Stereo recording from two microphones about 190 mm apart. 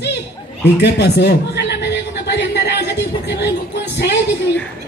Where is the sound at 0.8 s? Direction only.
60° left (ahead or behind).